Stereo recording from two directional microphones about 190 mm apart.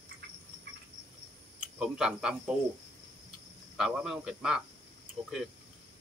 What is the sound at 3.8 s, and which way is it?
Speech, 5° right (ahead or behind).